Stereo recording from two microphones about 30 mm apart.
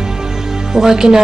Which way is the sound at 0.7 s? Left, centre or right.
Centre.